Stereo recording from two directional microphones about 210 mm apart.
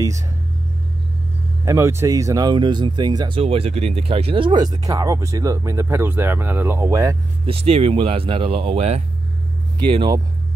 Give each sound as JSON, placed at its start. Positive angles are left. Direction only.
{"t": 1.6, "sound": "speech", "side_deg": -15}
{"t": 7.5, "sound": "speech", "side_deg": -30}